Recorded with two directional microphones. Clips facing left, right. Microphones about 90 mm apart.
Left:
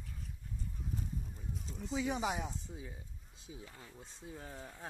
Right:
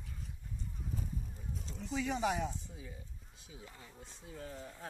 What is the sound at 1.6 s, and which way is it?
Speech, 10° left (ahead or behind).